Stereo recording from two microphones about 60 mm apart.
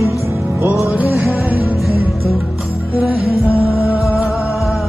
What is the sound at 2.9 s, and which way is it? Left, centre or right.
Music, right.